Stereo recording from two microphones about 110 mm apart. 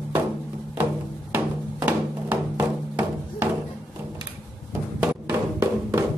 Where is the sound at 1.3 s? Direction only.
15° right (ahead or behind).